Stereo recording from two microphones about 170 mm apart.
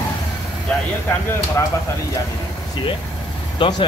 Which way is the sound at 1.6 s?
15° left (ahead or behind).